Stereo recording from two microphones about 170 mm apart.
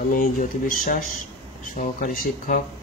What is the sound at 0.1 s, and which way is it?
Speech, 50° left (ahead or behind).